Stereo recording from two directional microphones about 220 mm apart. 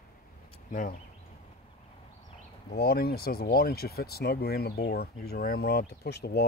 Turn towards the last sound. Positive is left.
turn(degrees=50)  # may be behind; listen again after turning